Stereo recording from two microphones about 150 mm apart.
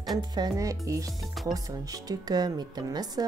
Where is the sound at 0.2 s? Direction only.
25° right (ahead or behind).